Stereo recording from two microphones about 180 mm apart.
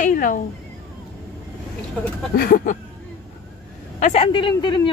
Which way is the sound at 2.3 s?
50° left (ahead or behind).